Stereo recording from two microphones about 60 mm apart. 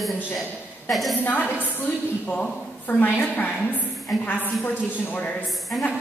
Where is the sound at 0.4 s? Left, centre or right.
Centre.